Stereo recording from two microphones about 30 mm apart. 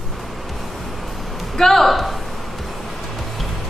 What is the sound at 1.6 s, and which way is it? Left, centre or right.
Speech, centre.